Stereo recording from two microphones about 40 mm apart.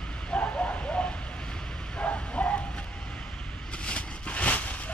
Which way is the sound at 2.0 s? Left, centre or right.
Left.